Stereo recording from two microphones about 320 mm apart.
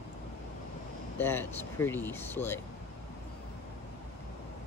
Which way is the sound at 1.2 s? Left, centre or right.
Centre.